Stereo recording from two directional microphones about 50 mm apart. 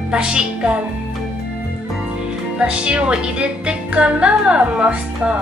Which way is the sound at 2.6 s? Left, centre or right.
Right.